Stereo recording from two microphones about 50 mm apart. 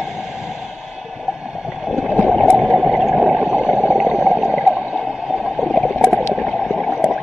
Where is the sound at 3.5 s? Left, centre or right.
Right.